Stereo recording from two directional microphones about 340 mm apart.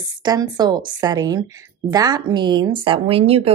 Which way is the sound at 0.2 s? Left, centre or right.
Centre.